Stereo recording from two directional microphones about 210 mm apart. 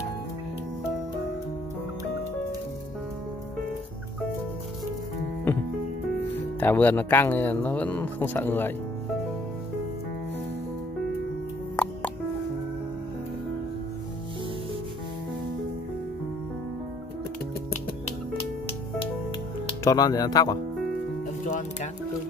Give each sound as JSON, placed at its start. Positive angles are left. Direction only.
{"t": 6.6, "sound": "speech", "side_deg": 10}
{"t": 11.7, "sound": "music", "side_deg": 5}
{"t": 19.8, "sound": "speech", "side_deg": 15}